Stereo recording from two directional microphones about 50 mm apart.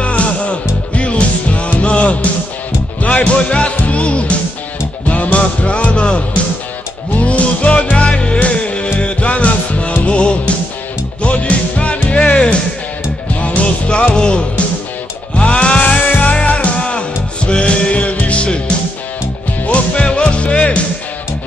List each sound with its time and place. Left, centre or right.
0.0 s music: left
15.8 s music: left
16.3 s music: left
19.6 s music: left